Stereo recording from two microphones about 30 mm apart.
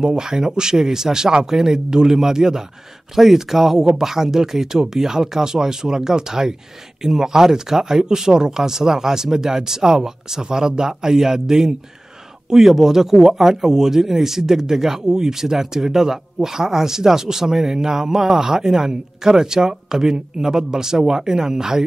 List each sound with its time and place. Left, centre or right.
0.0 s speech: right
0.7 s a man's voice: centre